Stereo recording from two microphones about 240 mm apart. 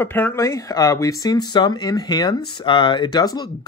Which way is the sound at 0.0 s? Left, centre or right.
Centre.